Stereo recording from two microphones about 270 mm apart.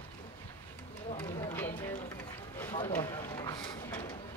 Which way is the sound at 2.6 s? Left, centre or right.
Centre.